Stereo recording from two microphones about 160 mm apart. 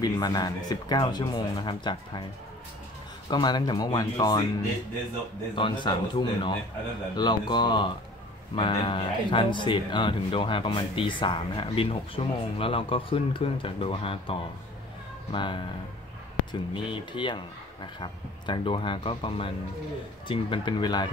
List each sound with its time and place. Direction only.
0.0 s speech: 25° left (ahead or behind)
3.3 s speech: 25° left (ahead or behind)
5.6 s speech: 30° left (ahead or behind)
16.7 s speech: 30° left (ahead or behind)